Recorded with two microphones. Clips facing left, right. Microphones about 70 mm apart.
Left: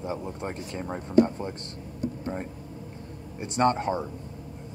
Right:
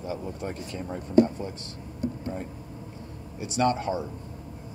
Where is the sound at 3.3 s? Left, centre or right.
Left.